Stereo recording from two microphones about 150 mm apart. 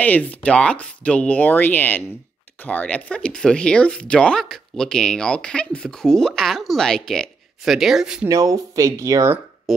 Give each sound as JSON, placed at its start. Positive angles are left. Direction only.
{"t": 0.0, "sound": "speech", "side_deg": 10}
{"t": 8.3, "sound": "speech", "side_deg": -20}
{"t": 9.7, "sound": "speech", "side_deg": 0}